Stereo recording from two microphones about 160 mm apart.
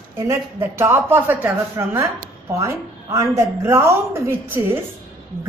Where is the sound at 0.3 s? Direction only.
15° right (ahead or behind).